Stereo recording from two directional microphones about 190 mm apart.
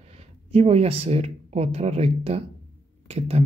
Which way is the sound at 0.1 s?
35° right (ahead or behind).